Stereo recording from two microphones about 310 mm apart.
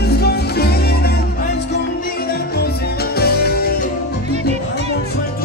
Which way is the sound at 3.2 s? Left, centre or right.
Left.